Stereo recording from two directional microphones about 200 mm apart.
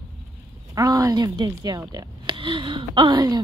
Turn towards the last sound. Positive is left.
turn(degrees=-20)  # may be behind; listen again after turning